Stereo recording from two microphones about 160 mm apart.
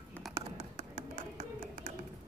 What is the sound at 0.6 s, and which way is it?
Tap, 50° right (ahead or behind).